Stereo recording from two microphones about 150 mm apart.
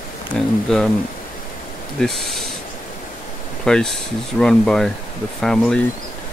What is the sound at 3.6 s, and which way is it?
Speech, 5° left (ahead or behind).